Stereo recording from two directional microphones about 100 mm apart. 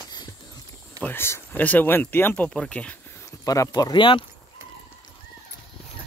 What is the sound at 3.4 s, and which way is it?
Speech, 35° left (ahead or behind).